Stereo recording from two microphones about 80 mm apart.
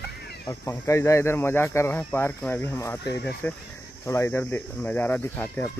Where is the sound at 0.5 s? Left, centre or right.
Left; by 3.6 s centre.